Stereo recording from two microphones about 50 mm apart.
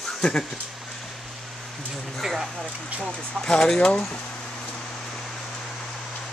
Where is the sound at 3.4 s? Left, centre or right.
Centre.